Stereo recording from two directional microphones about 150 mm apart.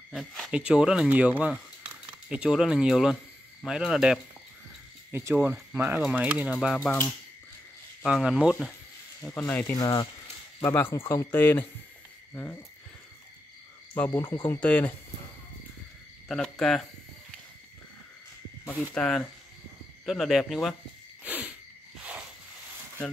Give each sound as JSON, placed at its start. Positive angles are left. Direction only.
{"t": 0.1, "sound": "speech", "side_deg": 5}
{"t": 6.8, "sound": "speech", "side_deg": 15}
{"t": 8.0, "sound": "speech", "side_deg": -5}
{"t": 9.5, "sound": "speech", "side_deg": 10}
{"t": 9.8, "sound": "speech", "side_deg": 25}
{"t": 10.6, "sound": "speech", "side_deg": 15}
{"t": 13.9, "sound": "speech", "side_deg": 10}
{"t": 16.3, "sound": "speech", "side_deg": 0}
{"t": 18.7, "sound": "speech", "side_deg": 5}
{"t": 21.2, "sound": "a sound", "side_deg": -10}